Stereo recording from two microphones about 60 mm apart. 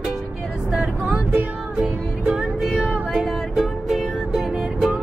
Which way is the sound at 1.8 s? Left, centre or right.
Centre.